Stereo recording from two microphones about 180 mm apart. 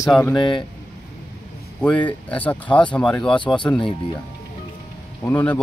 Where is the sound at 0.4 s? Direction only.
25° left (ahead or behind).